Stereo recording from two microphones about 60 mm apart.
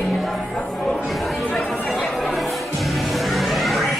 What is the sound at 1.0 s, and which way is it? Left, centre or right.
Chatter, centre.